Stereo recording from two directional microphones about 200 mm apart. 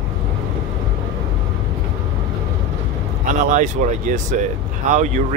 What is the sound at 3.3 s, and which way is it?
Speech, 40° right (ahead or behind).